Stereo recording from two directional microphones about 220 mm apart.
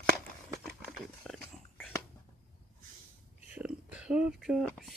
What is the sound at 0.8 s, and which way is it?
Dog, centre (ahead or behind).